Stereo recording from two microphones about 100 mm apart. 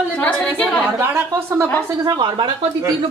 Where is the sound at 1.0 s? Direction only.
25° right (ahead or behind).